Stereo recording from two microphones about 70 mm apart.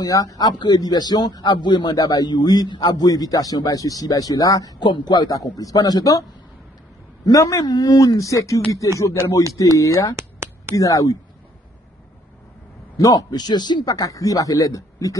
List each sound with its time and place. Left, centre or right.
0.0 s a man's voice: left
5.3 s a man's voice: left
7.2 s speech: left
9.8 s speech: left
10.1 s a sound: right
10.8 s speech: left
12.9 s a man's voice: left